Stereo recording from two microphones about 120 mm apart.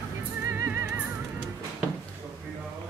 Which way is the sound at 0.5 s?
20° right (ahead or behind).